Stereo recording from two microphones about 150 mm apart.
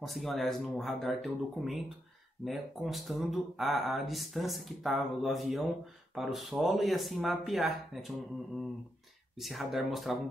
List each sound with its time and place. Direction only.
0.0 s speech: centre (ahead or behind)
9.4 s speech: centre (ahead or behind)